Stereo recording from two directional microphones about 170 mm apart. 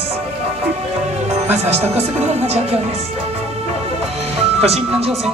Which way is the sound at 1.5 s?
40° right (ahead or behind).